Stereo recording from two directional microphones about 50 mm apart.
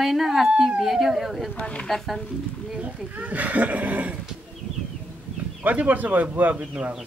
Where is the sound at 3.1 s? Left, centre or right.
Right.